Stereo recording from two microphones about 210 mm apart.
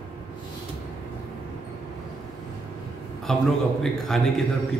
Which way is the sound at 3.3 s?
Centre (ahead or behind).